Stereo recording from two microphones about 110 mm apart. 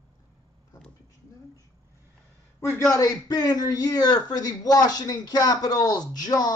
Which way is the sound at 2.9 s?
35° left (ahead or behind).